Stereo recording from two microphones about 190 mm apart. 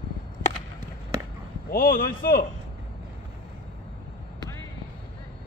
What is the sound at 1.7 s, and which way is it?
Speech, 50° left (ahead or behind).